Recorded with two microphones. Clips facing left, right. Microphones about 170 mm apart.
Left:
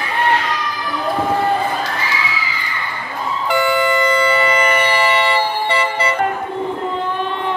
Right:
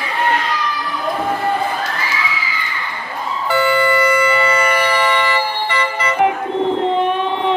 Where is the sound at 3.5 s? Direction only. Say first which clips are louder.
Right 1 dB; 15° left (ahead or behind).